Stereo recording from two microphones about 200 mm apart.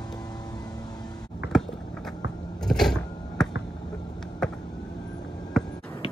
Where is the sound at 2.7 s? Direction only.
Centre (ahead or behind).